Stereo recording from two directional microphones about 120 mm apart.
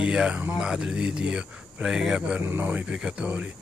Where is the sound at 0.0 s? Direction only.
5° right (ahead or behind).